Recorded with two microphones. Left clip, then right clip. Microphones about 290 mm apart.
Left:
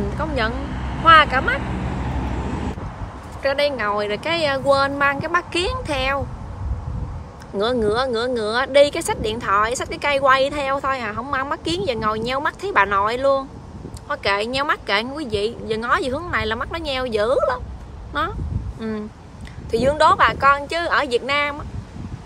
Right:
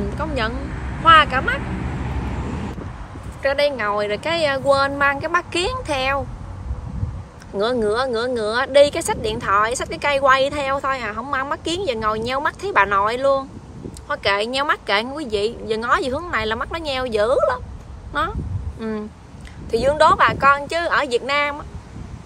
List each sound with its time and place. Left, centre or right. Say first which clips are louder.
0.2 s speech: left 1 dB; centre
1.6 s vehicle: left 1 dB; left
3.4 s speech: right 1 dB; centre
7.5 s speech: even; centre